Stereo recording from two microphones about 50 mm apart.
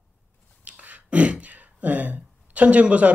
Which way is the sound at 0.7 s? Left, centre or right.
Right.